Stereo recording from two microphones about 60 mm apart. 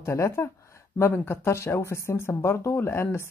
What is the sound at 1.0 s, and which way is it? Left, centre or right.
Speech, left.